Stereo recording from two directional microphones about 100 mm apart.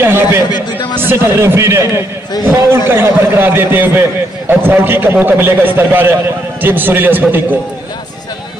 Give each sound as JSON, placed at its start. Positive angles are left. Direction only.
{"t": 0.0, "sound": "a man's voice", "side_deg": -25}
{"t": 0.5, "sound": "a man's voice", "side_deg": 45}
{"t": 1.0, "sound": "a man's voice", "side_deg": -25}